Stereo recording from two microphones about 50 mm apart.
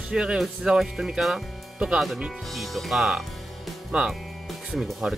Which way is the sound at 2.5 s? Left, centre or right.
Centre.